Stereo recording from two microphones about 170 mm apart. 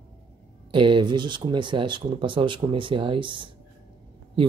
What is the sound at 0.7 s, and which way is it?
Speech, 30° right (ahead or behind).